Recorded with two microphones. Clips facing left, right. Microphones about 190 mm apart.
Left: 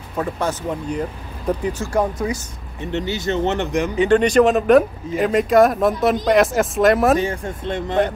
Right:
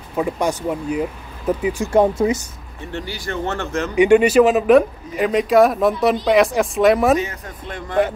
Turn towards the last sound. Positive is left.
turn(degrees=25)  # may be behind; listen again after turning